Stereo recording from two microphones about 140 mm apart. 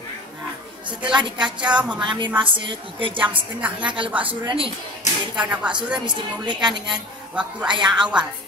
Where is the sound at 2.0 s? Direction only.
35° right (ahead or behind).